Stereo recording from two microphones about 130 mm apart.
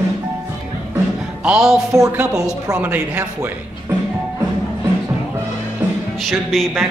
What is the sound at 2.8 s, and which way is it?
Music, 15° right (ahead or behind).